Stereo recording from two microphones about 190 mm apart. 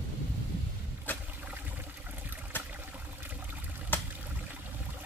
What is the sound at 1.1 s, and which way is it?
Boat, 10° left (ahead or behind).